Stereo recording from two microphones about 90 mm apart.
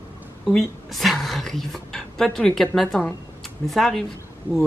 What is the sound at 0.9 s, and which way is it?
A woman's voice, centre (ahead or behind).